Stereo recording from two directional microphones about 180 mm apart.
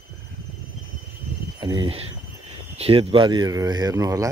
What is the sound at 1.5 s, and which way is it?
Speech, 25° right (ahead or behind).